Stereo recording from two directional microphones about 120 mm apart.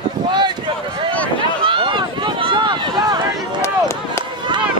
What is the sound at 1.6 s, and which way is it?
Run, 45° right (ahead or behind).